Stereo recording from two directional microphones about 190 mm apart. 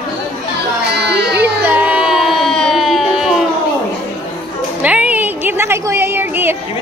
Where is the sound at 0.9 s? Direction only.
60° right (ahead or behind).